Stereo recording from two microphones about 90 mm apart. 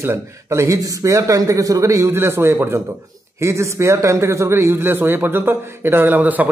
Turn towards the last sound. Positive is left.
turn(degrees=-20)  # may be behind; listen again after turning